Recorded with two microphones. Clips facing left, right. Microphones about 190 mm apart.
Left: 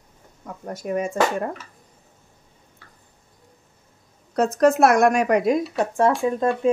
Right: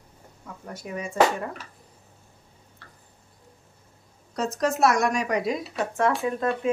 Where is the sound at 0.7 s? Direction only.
45° left (ahead or behind).